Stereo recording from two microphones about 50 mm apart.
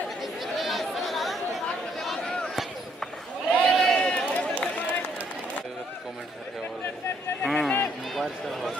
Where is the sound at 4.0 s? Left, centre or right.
Left.